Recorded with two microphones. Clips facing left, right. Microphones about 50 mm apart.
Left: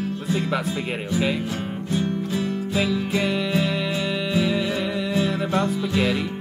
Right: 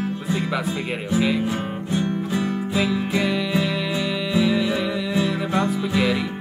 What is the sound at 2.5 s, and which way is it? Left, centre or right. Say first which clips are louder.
Music: right 1 dB; right.